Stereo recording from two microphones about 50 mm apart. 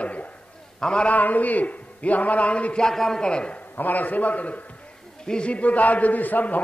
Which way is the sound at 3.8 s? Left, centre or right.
Left.